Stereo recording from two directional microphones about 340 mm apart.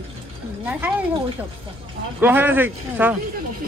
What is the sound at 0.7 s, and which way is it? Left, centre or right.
Speech, centre.